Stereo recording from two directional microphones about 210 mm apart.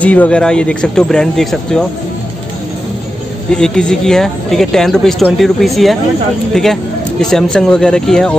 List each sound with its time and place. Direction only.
0.0 s speech: 5° left (ahead or behind)
3.5 s speech: 5° left (ahead or behind)